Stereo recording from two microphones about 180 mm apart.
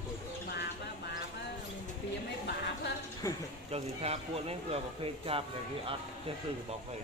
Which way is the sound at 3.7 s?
35° right (ahead or behind).